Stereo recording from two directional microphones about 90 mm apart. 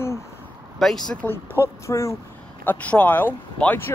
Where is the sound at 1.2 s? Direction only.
20° left (ahead or behind).